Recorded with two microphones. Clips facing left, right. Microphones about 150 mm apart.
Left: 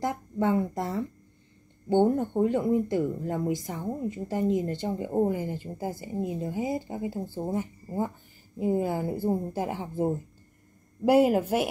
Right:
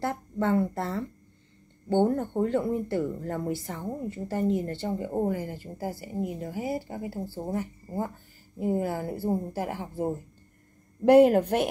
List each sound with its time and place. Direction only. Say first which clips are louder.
0.0 s speech: left 1 dB; 15° left (ahead or behind)
11.1 s speech: right 3 dB; 5° left (ahead or behind)